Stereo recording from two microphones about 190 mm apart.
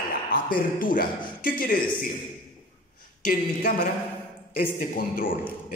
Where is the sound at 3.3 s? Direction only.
45° left (ahead or behind).